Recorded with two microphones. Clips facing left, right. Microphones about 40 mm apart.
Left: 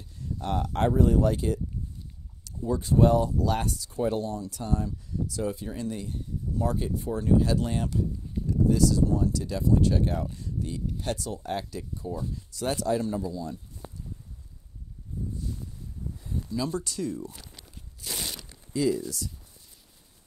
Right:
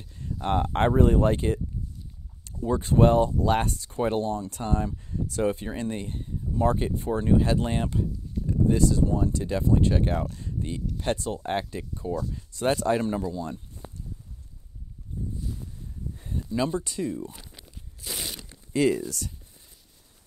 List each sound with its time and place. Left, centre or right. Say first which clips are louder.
0.0 s speech: right 3 dB; right
10.4 s a sound: right 1 dB; right
11.0 s speech: right 8 dB; right
16.2 s speech: right 4 dB; right; by 17.5 s centre
17.6 s walk: even; centre
18.7 s speech: right 3 dB; right